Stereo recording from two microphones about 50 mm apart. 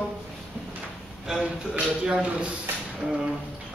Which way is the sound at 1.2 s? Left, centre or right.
Centre.